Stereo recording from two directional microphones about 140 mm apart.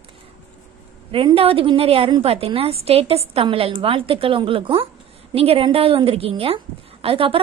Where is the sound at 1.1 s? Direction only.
40° right (ahead or behind).